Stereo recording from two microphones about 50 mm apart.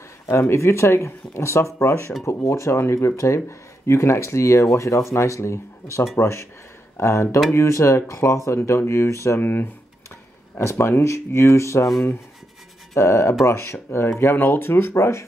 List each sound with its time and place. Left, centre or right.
0.3 s speech: left
2.2 s speech: left
3.2 s speech: left
6.1 s speech: left
9.4 s speech: left
10.6 s speech: left
12.9 s speech: left
13.5 s speech: left
14.3 s speech: left